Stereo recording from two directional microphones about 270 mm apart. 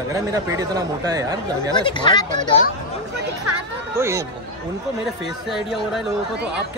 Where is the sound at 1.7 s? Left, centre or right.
Centre.